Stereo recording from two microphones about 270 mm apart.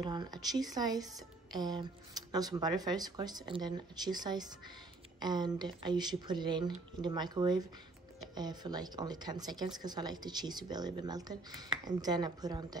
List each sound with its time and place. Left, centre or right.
0.0 s speech: centre